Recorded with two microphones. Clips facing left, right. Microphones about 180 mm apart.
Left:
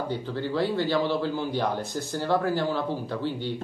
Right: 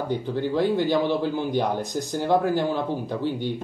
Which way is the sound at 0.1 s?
15° right (ahead or behind).